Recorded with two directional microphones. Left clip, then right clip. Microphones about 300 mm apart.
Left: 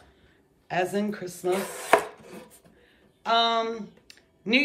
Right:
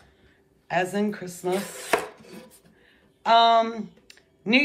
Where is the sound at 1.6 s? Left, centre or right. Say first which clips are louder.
Left 4 dB; centre.